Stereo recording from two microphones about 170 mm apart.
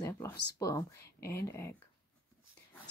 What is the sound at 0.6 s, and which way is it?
Speech, 20° left (ahead or behind).